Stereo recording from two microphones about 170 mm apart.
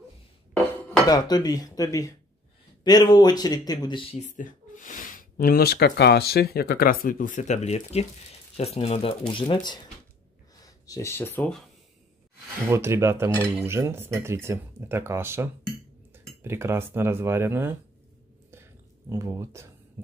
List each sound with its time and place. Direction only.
1.0 s speech: 25° left (ahead or behind)
4.3 s speech: 50° left (ahead or behind); by 11.6 s 10° left (ahead or behind)
12.6 s speech: 15° right (ahead or behind)
18.5 s whispering: 15° right (ahead or behind)